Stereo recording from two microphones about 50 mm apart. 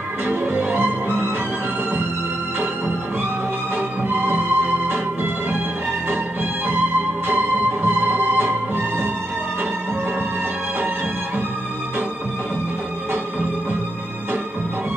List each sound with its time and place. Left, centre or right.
0.3 s music: right
3.7 s music: right
7.2 s music: right